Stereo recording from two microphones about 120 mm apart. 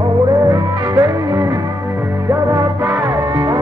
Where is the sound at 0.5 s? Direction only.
30° right (ahead or behind).